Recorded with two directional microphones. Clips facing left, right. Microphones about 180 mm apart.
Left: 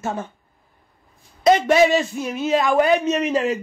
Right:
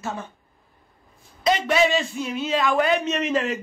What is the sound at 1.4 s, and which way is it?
A man's voice, 45° left (ahead or behind).